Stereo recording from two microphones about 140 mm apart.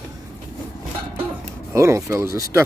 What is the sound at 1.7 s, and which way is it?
Speech, 20° right (ahead or behind).